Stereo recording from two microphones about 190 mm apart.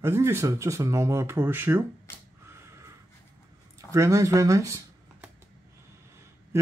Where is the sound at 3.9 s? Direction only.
15° right (ahead or behind).